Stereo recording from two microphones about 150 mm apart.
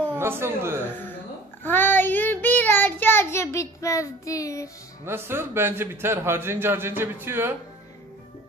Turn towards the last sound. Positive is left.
turn(degrees=-15)  # may be behind; listen again after turning